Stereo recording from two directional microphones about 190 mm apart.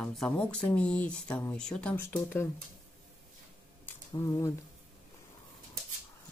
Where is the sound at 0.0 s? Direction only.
5° left (ahead or behind).